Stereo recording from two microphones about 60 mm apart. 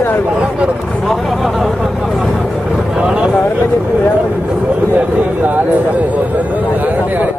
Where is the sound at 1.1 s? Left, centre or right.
Centre.